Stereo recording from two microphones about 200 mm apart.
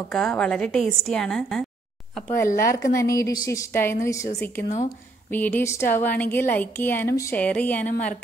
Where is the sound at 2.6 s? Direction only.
15° left (ahead or behind).